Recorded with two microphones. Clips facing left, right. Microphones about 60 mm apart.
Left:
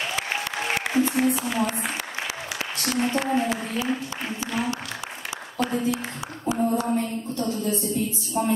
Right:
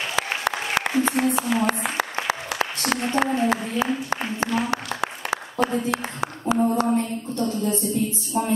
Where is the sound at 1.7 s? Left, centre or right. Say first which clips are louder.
Right 5 dB; right.